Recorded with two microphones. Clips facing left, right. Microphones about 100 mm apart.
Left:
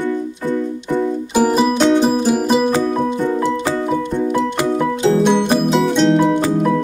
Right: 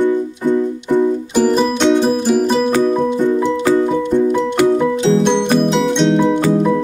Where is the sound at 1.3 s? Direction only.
10° left (ahead or behind).